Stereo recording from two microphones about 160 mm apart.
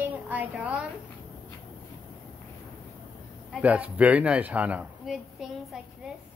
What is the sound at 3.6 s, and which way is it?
A woman's voice, 10° right (ahead or behind).